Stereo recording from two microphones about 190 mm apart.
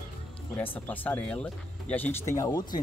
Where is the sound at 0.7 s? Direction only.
10° left (ahead or behind).